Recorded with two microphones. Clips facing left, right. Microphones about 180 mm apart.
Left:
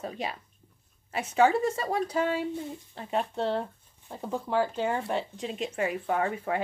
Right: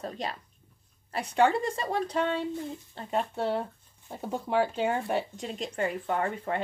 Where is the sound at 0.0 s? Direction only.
5° left (ahead or behind).